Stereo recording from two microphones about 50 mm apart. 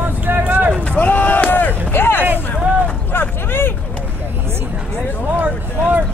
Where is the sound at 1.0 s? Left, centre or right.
Left.